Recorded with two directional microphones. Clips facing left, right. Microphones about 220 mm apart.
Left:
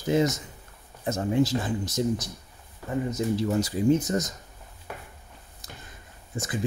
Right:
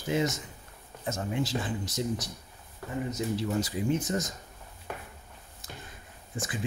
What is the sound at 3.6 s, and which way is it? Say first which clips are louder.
Speech: left 9 dB; 40° left (ahead or behind).